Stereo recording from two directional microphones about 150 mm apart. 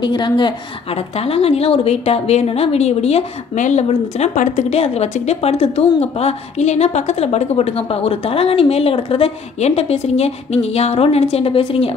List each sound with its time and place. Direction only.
0.0 s a woman's voice: 30° left (ahead or behind)
0.9 s a woman's voice: 40° left (ahead or behind)